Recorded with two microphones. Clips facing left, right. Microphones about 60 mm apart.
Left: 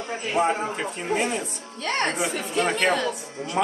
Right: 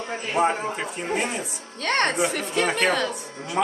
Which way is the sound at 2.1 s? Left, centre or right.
Centre.